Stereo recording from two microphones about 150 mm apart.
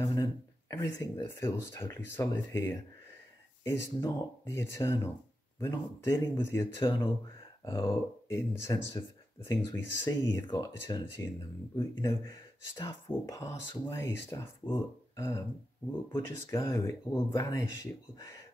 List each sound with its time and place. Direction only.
0.0 s speech: 25° left (ahead or behind)